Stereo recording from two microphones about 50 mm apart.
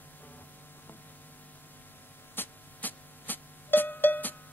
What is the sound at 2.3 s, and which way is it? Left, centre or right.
Music, left.